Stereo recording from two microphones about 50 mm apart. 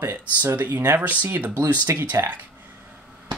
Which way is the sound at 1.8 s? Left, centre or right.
Right.